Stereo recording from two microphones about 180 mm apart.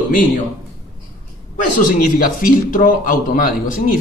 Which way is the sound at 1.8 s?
45° left (ahead or behind).